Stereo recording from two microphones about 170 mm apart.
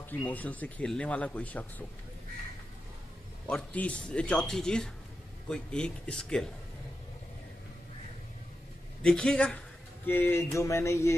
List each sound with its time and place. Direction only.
0.2 s speech: 10° left (ahead or behind)
3.4 s speech: 5° left (ahead or behind)
9.0 s speech: 5° left (ahead or behind)